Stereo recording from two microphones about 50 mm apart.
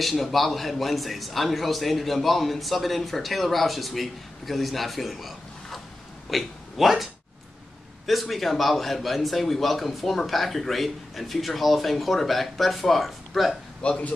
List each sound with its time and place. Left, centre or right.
0.0 s a man's voice: centre
8.1 s a man's voice: centre
13.8 s speech: left